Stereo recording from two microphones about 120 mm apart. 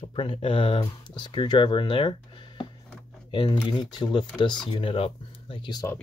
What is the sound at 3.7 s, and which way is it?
Speech, 35° left (ahead or behind).